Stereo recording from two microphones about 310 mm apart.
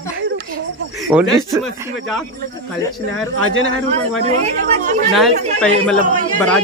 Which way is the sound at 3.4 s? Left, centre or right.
Left.